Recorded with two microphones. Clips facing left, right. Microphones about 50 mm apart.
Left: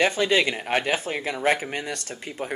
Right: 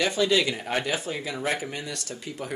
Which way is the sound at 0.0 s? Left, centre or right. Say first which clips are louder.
Left 2 dB; left.